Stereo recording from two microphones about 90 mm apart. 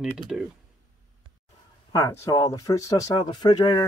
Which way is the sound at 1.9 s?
40° left (ahead or behind).